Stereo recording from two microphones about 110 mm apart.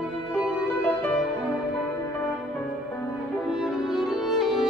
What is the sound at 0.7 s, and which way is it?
Music, 20° left (ahead or behind).